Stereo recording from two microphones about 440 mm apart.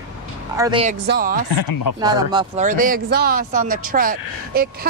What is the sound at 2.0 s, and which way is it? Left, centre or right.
Speech, centre.